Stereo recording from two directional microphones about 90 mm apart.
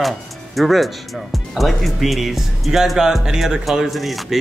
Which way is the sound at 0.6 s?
Centre (ahead or behind).